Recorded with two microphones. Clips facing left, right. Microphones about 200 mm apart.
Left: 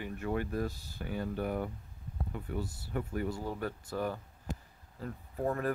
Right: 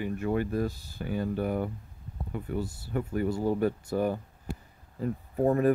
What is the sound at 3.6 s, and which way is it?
Speech, 15° right (ahead or behind).